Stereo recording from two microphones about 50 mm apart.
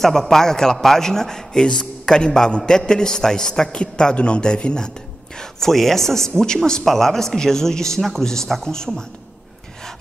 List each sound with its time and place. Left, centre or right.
0.0 s a man's voice: centre
5.4 s a man's voice: centre